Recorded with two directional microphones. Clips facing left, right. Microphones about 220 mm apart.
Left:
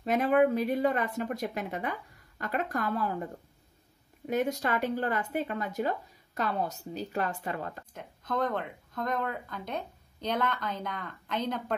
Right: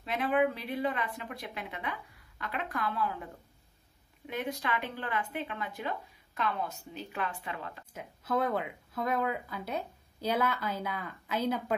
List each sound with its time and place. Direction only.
0.0 s a woman's voice: 45° left (ahead or behind)
4.3 s speech: 40° left (ahead or behind)
7.9 s speech: 5° right (ahead or behind)